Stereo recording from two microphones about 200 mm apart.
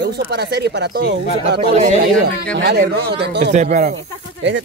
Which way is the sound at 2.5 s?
60° right (ahead or behind).